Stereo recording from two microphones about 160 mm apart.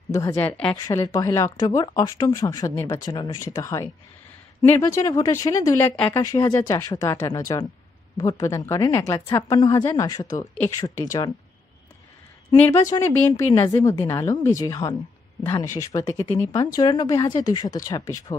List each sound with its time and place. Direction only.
0.1 s a woman's voice: 20° left (ahead or behind)
0.8 s speech: 25° left (ahead or behind)
12.8 s a woman's voice: 20° left (ahead or behind)